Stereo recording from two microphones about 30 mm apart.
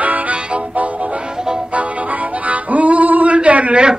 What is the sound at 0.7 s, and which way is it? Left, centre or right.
Music, right.